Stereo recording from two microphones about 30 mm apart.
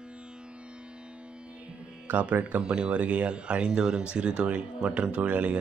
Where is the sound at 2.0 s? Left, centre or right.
Right.